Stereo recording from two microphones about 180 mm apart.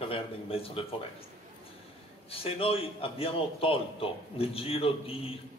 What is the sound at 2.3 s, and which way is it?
A man's voice, 30° left (ahead or behind).